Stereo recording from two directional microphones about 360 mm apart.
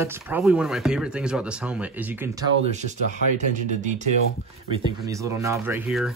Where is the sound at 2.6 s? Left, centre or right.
Centre.